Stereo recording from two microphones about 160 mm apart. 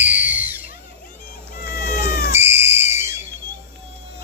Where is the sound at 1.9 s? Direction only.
65° left (ahead or behind).